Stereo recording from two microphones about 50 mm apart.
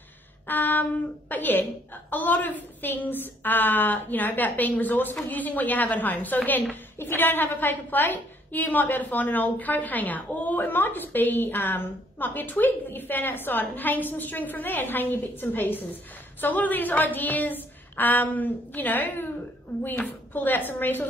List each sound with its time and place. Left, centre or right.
0.5 s a sound: left
1.3 s a woman's voice: left
10.6 s a woman's voice: left